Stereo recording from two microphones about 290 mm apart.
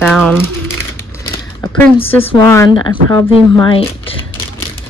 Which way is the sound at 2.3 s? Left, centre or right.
Centre.